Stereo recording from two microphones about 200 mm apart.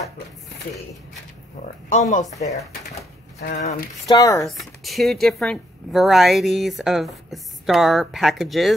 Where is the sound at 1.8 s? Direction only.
35° left (ahead or behind).